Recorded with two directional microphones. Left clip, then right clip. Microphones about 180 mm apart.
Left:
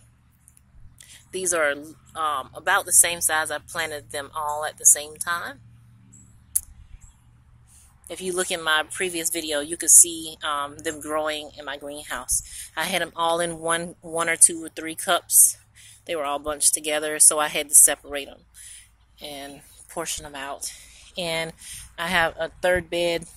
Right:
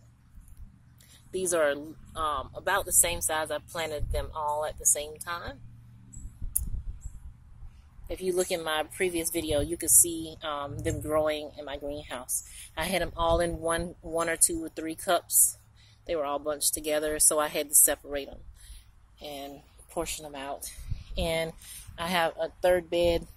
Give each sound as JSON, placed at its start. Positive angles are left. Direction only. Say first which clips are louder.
{"t": 0.9, "sound": "speech", "louder": "left 2 dB", "side_deg": 0}
{"t": 8.1, "sound": "speech", "louder": "left 2 dB", "side_deg": -5}